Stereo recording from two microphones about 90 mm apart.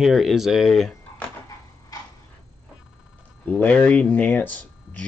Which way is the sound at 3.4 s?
15° left (ahead or behind).